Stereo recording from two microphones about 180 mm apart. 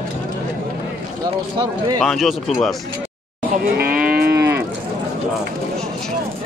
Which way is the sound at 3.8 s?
55° right (ahead or behind).